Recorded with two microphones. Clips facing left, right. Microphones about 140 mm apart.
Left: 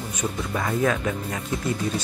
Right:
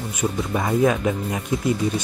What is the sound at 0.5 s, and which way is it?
Speech, 20° right (ahead or behind).